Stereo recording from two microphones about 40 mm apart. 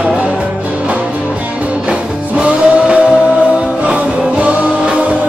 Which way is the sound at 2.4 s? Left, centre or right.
Right.